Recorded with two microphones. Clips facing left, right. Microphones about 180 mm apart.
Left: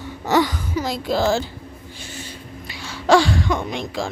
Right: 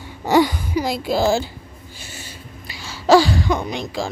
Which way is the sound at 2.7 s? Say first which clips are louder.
Right 2 dB; centre (ahead or behind).